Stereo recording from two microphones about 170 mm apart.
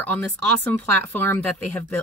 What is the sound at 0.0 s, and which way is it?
Speech, 10° left (ahead or behind).